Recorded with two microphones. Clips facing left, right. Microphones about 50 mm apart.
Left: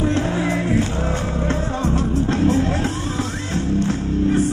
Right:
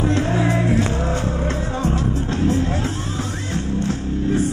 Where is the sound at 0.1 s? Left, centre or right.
Left.